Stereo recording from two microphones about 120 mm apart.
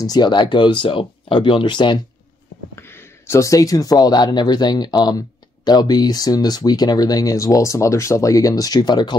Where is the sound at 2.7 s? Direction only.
20° left (ahead or behind).